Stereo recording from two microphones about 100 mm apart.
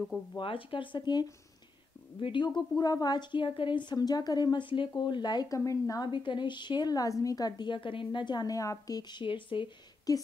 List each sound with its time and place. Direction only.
0.4 s a woman's voice: 60° left (ahead or behind); by 5.6 s 45° left (ahead or behind)
5.6 s speech: 35° left (ahead or behind)
6.0 s a woman's voice: 50° left (ahead or behind)
9.2 s speech: 55° left (ahead or behind)
10.1 s speech: 35° left (ahead or behind)